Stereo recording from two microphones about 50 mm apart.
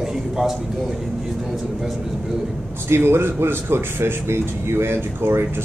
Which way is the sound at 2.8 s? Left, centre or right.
Right.